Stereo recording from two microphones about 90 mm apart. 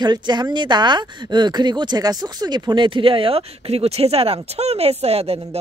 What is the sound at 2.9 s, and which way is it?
Speech, 80° right.